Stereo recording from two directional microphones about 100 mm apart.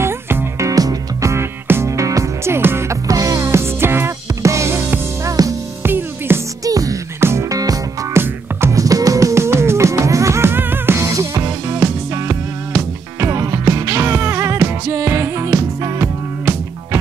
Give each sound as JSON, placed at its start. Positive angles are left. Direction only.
{"t": 0.0, "sound": "music", "side_deg": -25}
{"t": 0.7, "sound": "music", "side_deg": -35}
{"t": 5.9, "sound": "music", "side_deg": -20}
{"t": 6.6, "sound": "music", "side_deg": -35}
{"t": 8.1, "sound": "music", "side_deg": -25}